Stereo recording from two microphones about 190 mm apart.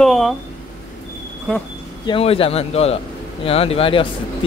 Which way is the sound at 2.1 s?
30° left (ahead or behind).